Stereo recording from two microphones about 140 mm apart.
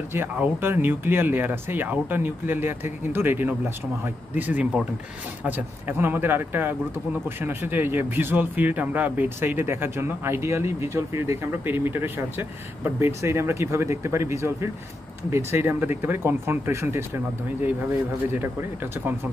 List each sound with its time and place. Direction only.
0.1 s a man's voice: 15° right (ahead or behind)